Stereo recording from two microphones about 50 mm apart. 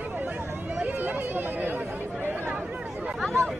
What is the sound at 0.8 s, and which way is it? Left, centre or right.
Chatter, right.